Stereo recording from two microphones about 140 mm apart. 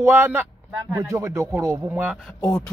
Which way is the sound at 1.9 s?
10° right (ahead or behind).